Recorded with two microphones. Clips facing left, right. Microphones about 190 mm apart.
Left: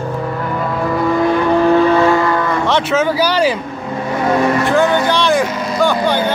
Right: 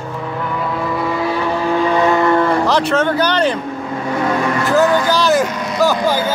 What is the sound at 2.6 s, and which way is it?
Speech, centre (ahead or behind).